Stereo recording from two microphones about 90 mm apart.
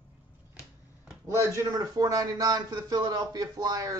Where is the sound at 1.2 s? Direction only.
35° right (ahead or behind).